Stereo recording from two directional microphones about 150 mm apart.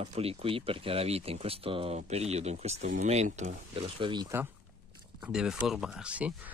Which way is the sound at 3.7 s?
35° right (ahead or behind).